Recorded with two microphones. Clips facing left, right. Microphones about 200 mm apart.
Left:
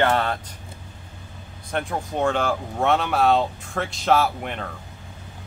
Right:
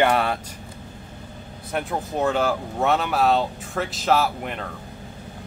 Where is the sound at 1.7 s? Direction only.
5° right (ahead or behind).